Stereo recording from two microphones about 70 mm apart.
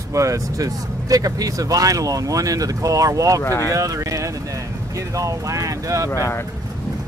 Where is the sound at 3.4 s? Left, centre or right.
Left.